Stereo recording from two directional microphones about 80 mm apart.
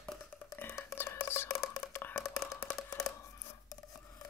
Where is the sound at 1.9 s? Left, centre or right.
Left.